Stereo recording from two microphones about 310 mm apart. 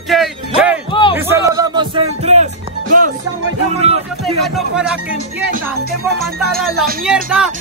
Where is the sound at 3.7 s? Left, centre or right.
Centre.